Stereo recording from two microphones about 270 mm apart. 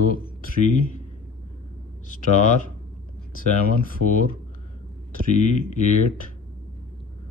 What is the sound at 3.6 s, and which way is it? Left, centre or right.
Speech, left.